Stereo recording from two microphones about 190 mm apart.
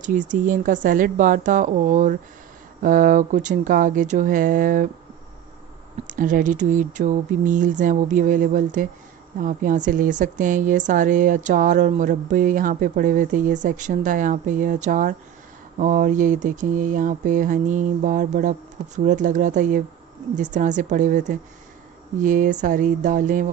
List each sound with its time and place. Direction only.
0.0 s speech: 40° right (ahead or behind)
6.0 s a woman's voice: 45° right (ahead or behind)